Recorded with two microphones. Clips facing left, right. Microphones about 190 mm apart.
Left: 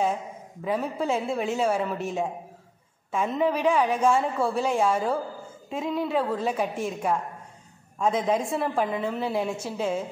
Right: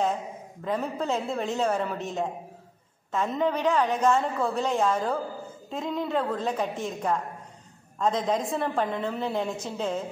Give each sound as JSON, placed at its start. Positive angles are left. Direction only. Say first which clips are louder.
{"t": 0.7, "sound": "a woman's voice", "louder": "left 2 dB", "side_deg": 10}